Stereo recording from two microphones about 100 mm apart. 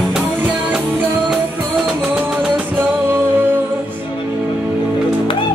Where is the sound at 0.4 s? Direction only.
15° right (ahead or behind).